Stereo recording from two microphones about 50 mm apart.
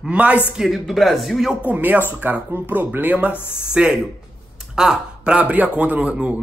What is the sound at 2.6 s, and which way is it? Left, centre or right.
Speech, right.